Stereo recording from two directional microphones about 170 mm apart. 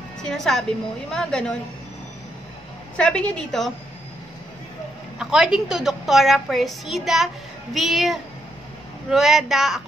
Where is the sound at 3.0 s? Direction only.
5° left (ahead or behind).